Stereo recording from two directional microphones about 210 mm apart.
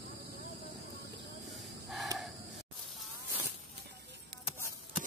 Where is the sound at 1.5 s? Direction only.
Centre (ahead or behind).